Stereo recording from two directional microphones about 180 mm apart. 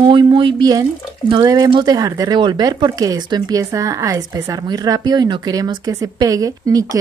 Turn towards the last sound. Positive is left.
turn(degrees=-20)  # may be behind; listen again after turning